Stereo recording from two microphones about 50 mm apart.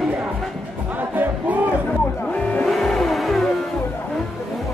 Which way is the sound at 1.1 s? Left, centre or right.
Right.